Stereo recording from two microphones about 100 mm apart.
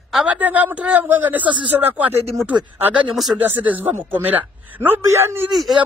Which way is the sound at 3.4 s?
15° right (ahead or behind).